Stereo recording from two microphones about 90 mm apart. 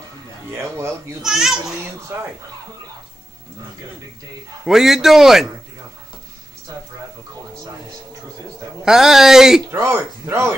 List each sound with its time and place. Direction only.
0.5 s speech: 30° right (ahead or behind)
1.2 s speech: 5° right (ahead or behind)
4.6 s speech: 5° right (ahead or behind)
6.7 s speech: 40° right (ahead or behind)
8.8 s speech: 5° right (ahead or behind)
9.7 s speech: 30° right (ahead or behind)